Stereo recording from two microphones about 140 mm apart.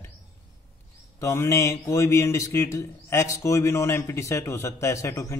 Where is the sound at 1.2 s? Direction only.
20° left (ahead or behind).